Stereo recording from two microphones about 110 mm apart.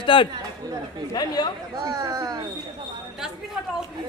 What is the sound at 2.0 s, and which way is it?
Speech, 40° right (ahead or behind).